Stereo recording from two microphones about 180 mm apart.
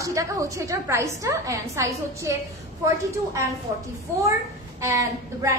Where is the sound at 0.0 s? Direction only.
20° right (ahead or behind).